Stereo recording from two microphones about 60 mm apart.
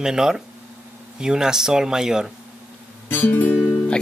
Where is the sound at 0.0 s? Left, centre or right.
Centre.